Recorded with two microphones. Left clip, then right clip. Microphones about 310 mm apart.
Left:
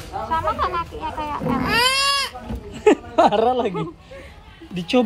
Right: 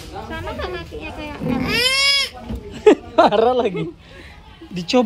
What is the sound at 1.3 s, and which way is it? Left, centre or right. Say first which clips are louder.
Vehicle: right 1 dB; centre.